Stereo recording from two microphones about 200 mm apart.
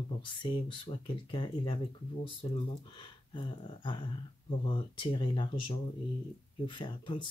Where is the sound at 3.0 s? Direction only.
25° left (ahead or behind).